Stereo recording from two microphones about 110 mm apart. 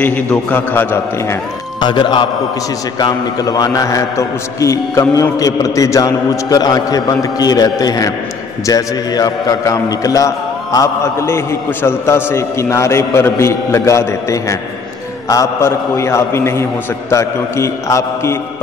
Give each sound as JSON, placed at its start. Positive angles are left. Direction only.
{"t": 0.0, "sound": "a man's voice", "side_deg": 15}
{"t": 1.8, "sound": "a man's voice", "side_deg": 45}